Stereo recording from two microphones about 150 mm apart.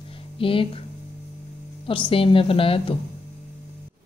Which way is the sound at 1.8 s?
35° left (ahead or behind).